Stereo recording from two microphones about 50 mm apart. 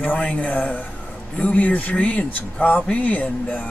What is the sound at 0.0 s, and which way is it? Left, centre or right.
Speech, left.